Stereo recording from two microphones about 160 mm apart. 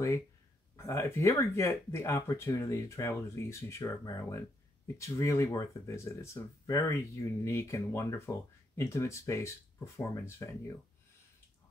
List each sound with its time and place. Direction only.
0.7 s speech: 15° left (ahead or behind)